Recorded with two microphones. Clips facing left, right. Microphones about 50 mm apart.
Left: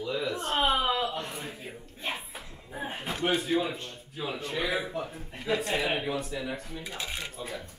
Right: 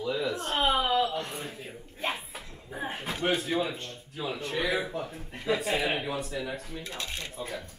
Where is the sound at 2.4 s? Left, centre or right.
Centre.